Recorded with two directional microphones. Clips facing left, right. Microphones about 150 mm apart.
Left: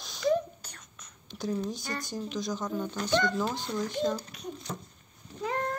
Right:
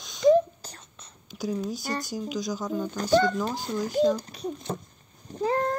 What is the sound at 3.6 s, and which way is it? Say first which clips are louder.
Speech: right 6 dB; 40° right (ahead or behind).